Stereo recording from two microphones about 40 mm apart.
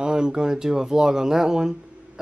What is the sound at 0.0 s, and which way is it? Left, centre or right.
Speech, right.